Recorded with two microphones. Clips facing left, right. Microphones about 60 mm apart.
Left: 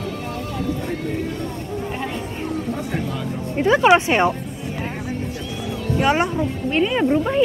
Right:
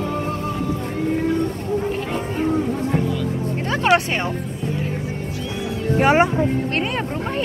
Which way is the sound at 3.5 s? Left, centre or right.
Centre.